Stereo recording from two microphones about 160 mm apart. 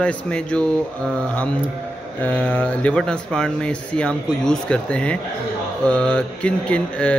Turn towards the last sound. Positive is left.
turn(degrees=5)  # may be behind; listen again after turning